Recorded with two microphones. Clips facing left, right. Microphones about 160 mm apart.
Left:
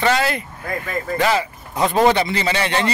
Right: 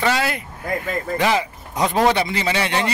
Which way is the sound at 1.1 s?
15° right (ahead or behind).